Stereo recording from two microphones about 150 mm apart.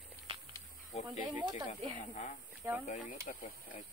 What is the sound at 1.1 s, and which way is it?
Speech, 30° right (ahead or behind).